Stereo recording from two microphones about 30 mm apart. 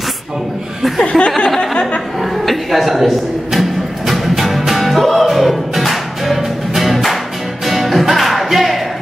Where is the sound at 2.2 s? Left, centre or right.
Centre.